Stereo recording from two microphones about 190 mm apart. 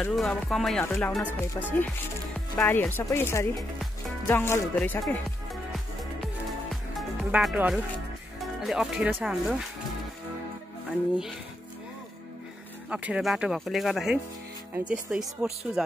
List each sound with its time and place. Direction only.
0.0 s speech: centre (ahead or behind)
6.2 s music: centre (ahead or behind)
8.4 s speech: centre (ahead or behind)
10.9 s speech: centre (ahead or behind)
12.9 s speech: 5° right (ahead or behind)